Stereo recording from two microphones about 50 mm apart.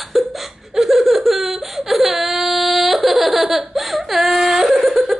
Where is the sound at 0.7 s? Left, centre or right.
Centre.